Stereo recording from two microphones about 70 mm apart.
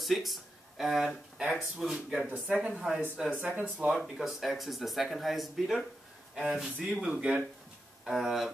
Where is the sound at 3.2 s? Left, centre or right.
Centre.